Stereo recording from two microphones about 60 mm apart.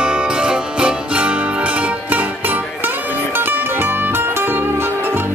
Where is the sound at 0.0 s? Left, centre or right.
Centre.